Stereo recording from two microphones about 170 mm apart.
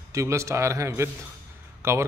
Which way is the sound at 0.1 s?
15° right (ahead or behind).